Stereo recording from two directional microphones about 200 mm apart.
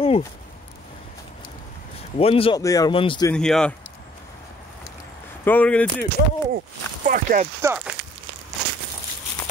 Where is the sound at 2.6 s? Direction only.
15° left (ahead or behind).